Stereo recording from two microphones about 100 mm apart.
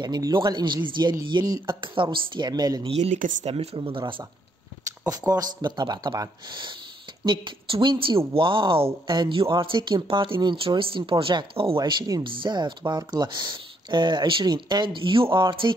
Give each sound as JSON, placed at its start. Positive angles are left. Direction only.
{"t": 0.0, "sound": "speech", "side_deg": -45}
{"t": 1.4, "sound": "speech", "side_deg": -35}
{"t": 1.8, "sound": "speech", "side_deg": -55}
{"t": 2.8, "sound": "speech", "side_deg": -90}
{"t": 4.8, "sound": "speech", "side_deg": -35}
{"t": 6.5, "sound": "speech", "side_deg": -55}
{"t": 11.8, "sound": "speech", "side_deg": -45}